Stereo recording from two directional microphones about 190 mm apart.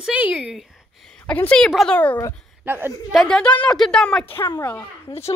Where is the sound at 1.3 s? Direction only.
5° left (ahead or behind).